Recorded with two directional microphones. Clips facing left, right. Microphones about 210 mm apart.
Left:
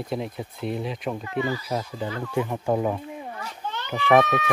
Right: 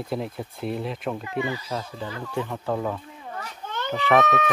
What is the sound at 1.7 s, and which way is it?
Speech, 15° left (ahead or behind).